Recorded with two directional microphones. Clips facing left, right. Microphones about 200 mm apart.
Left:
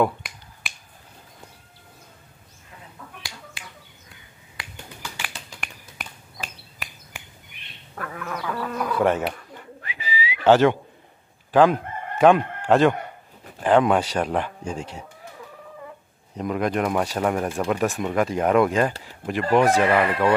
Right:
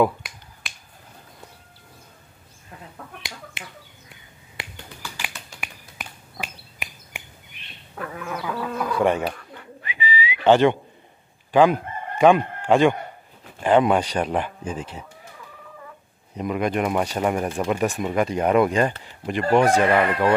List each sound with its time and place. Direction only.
0.0 s finger snapping: centre (ahead or behind)
3.2 s finger snapping: 20° right (ahead or behind)
6.4 s bird: 15° right (ahead or behind)
7.9 s fowl: 5° right (ahead or behind)
9.9 s whistling: 5° left (ahead or behind)
11.5 s crowing: centre (ahead or behind)
13.6 s speech: 5° right (ahead or behind)
16.3 s speech: 5° right (ahead or behind)